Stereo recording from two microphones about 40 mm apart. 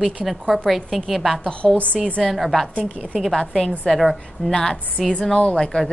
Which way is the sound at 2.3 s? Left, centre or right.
Centre.